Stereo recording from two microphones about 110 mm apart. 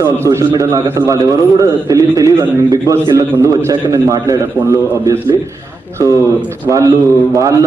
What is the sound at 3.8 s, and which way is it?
Speech, 35° right (ahead or behind).